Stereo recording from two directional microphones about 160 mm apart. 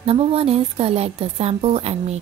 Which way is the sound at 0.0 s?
35° right (ahead or behind).